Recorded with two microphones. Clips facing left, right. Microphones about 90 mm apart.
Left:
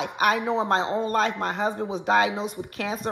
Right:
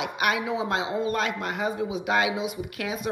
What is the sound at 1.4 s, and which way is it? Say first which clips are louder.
Speech: left 2 dB; 35° left (ahead or behind).